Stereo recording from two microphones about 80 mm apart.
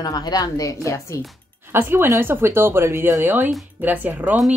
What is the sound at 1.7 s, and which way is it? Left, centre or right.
Speech, right.